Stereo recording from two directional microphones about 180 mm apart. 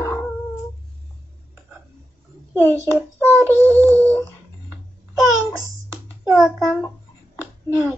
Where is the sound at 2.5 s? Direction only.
15° right (ahead or behind).